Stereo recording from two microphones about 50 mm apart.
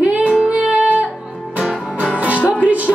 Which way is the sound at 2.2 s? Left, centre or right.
Right.